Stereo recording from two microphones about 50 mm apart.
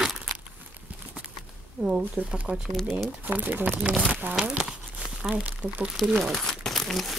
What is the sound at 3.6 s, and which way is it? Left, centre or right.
Speech, right.